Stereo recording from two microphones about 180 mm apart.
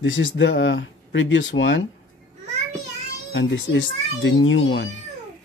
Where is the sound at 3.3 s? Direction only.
80° left.